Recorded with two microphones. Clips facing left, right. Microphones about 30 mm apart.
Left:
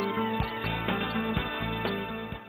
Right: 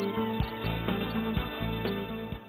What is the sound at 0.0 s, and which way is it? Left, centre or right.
Music, centre.